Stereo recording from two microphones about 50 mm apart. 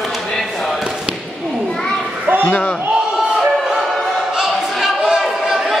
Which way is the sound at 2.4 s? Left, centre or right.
Left.